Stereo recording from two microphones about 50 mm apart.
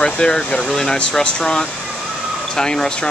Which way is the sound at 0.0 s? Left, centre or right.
Centre.